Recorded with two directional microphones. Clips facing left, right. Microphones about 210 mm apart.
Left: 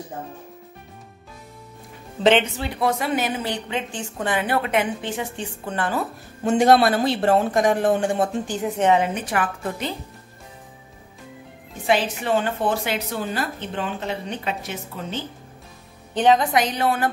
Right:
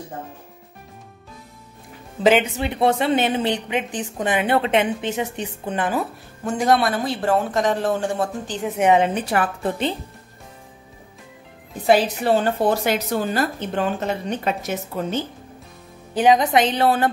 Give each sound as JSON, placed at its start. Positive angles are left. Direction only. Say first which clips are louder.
{"t": 2.1, "sound": "speech", "louder": "right 1 dB", "side_deg": -5}
{"t": 2.5, "sound": "a woman's voice", "louder": "right 4 dB", "side_deg": -20}
{"t": 6.4, "sound": "speech", "louder": "left 3 dB", "side_deg": 25}
{"t": 7.5, "sound": "speech", "louder": "left 2 dB", "side_deg": 15}
{"t": 8.7, "sound": "speech", "louder": "right 2 dB", "side_deg": -10}
{"t": 9.3, "sound": "a woman's voice", "louder": "right 3 dB", "side_deg": -35}
{"t": 11.7, "sound": "speech", "louder": "right 4 dB", "side_deg": -35}
{"t": 16.2, "sound": "speech", "louder": "right 1 dB", "side_deg": -10}
{"t": 16.5, "sound": "a woman's voice", "louder": "right 3 dB", "side_deg": -30}